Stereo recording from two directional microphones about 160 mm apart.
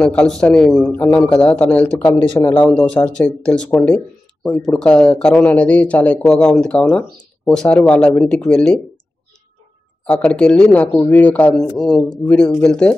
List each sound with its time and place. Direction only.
0.0 s a man's voice: 5° left (ahead or behind)
2.4 s speech: 25° left (ahead or behind)
2.7 s speech: 5° left (ahead or behind)
10.0 s speech: 5° left (ahead or behind)